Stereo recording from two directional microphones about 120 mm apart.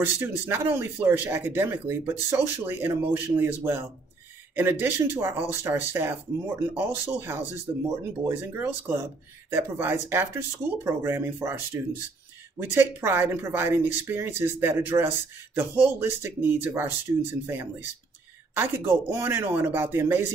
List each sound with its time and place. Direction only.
0.0 s speech: 20° right (ahead or behind)